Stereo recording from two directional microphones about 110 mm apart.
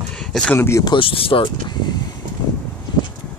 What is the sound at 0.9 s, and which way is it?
Speech, 55° left (ahead or behind).